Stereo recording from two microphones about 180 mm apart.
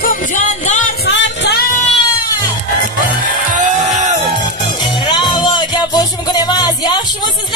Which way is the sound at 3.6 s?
40° right (ahead or behind).